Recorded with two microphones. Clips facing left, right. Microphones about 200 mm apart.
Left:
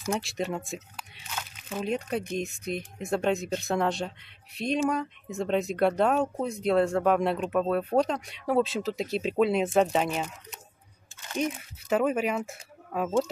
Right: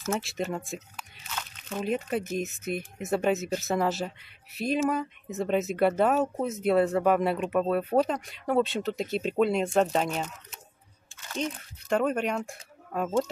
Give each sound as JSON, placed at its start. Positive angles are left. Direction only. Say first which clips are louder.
{"t": 0.1, "sound": "speech", "louder": "even", "side_deg": 0}